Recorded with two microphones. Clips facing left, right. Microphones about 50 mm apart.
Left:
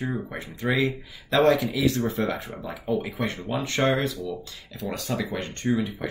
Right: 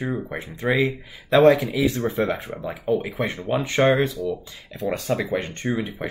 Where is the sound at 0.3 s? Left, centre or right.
Right.